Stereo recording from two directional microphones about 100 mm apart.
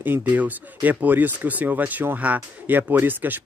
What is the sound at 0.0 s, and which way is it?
Speech, 20° right (ahead or behind).